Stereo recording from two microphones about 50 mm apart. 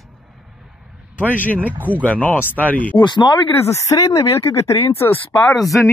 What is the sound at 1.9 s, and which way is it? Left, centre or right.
Speech, left.